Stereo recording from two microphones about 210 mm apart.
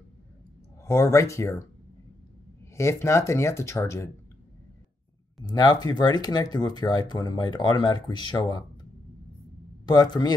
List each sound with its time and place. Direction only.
0.8 s speech: 15° left (ahead or behind)
2.7 s speech: 15° left (ahead or behind)
5.4 s speech: 20° left (ahead or behind)
9.8 s speech: 20° left (ahead or behind)